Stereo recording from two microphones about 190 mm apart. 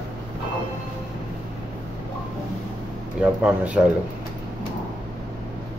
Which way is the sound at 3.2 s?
5° right (ahead or behind).